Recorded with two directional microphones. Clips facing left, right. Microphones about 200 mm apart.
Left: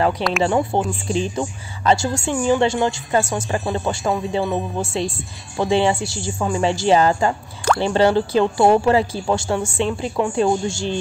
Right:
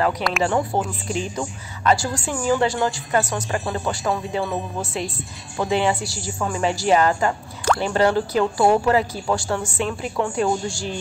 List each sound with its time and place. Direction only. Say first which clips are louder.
0.4 s a woman's voice: left 2 dB; 25° left (ahead or behind)